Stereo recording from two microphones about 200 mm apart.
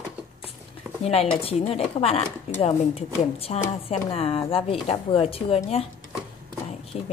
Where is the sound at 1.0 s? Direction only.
30° left (ahead or behind).